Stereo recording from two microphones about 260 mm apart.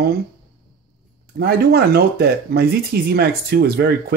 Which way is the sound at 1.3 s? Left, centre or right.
Right.